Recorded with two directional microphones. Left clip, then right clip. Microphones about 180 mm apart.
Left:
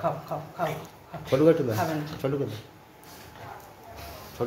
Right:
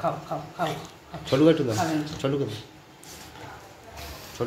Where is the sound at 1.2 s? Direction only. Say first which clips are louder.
Right 1 dB; 5° right (ahead or behind).